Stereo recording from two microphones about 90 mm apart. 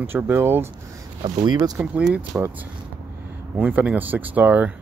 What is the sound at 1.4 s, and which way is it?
Speech, 50° right (ahead or behind).